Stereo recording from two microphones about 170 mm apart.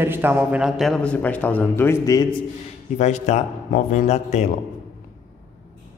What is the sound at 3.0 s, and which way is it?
Speech, 45° left (ahead or behind).